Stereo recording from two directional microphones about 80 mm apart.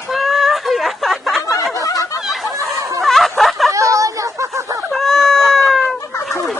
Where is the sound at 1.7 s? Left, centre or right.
Left.